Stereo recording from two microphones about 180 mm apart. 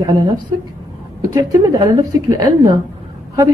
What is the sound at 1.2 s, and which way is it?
A woman's voice, 20° right (ahead or behind).